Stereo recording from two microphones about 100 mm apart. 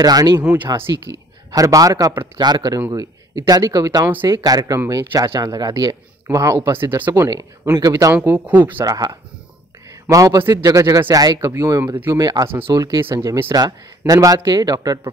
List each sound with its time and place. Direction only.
0.0 s speech: 40° right (ahead or behind)
0.7 s speech: 30° right (ahead or behind)
6.3 s speech: 30° right (ahead or behind)
7.7 s speech: 35° right (ahead or behind)
8.1 s speech: 25° right (ahead or behind)
8.8 s speech: 40° right (ahead or behind)
9.8 s a sound: 35° right (ahead or behind)
10.5 s speech: 40° right (ahead or behind)
12.1 s speech: 40° right (ahead or behind)
12.4 s speech: 25° right (ahead or behind)
12.7 s speech: 40° right (ahead or behind)